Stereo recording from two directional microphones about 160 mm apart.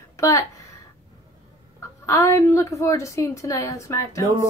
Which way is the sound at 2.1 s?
20° left (ahead or behind).